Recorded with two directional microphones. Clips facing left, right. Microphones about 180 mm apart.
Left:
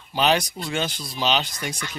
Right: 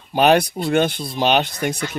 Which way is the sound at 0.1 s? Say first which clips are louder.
Right 6 dB; 55° right (ahead or behind).